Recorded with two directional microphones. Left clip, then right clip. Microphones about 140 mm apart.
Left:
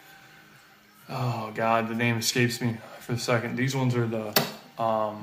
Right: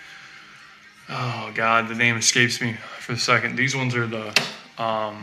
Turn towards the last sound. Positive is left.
turn(degrees=0)  # may be behind; listen again after turning